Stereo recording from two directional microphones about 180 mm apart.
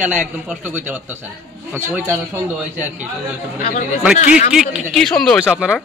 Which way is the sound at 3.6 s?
50° left (ahead or behind).